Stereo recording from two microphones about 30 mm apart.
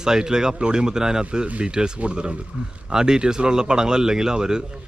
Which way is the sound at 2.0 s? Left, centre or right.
Right.